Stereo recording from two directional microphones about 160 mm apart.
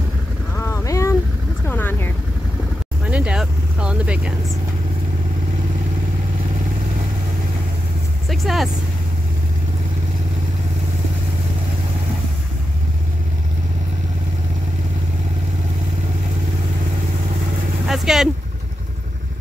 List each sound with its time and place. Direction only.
0.6 s boat: 15° left (ahead or behind)
1.7 s vehicle: 15° left (ahead or behind)
3.1 s vehicle: 5° right (ahead or behind)
8.3 s speech: centre (ahead or behind)
17.8 s speech: centre (ahead or behind)